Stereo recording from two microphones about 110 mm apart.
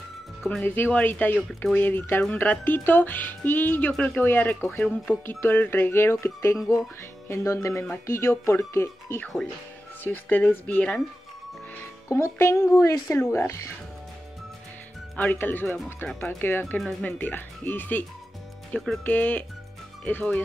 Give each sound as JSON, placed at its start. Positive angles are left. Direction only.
{"t": 0.4, "sound": "speech", "side_deg": 10}
{"t": 12.1, "sound": "speech", "side_deg": 20}
{"t": 15.1, "sound": "speech", "side_deg": 15}